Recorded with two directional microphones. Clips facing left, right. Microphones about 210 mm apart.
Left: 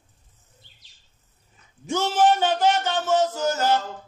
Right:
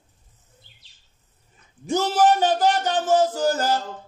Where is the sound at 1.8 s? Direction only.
40° right (ahead or behind).